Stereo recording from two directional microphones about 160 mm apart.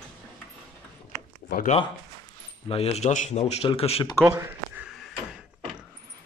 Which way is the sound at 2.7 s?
40° left (ahead or behind).